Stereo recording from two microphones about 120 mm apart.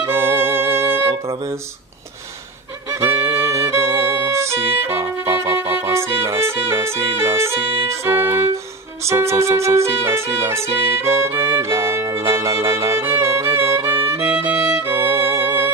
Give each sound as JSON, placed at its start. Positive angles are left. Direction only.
{"t": 0.0, "sound": "music", "side_deg": -20}
{"t": 2.9, "sound": "music", "side_deg": -20}
{"t": 13.6, "sound": "violin", "side_deg": -20}
{"t": 14.0, "sound": "music", "side_deg": -20}